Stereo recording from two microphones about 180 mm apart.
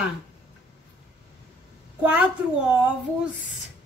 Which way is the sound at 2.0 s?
5° right (ahead or behind).